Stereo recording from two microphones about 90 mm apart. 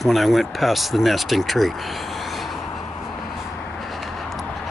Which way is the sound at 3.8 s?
Centre (ahead or behind).